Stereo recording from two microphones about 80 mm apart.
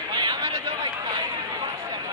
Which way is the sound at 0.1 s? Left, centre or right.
Right.